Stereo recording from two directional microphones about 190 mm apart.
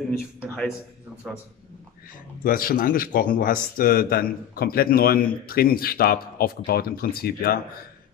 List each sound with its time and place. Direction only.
1.3 s a man's voice: centre (ahead or behind)
2.4 s speech: 50° left (ahead or behind)